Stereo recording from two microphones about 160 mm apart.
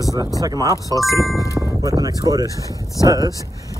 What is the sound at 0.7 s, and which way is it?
Speech, 20° left (ahead or behind).